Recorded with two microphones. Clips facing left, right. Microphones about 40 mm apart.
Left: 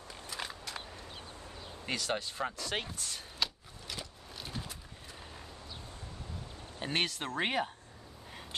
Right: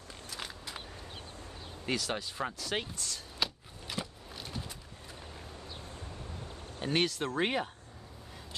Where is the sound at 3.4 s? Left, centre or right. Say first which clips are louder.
Right 1 dB; centre.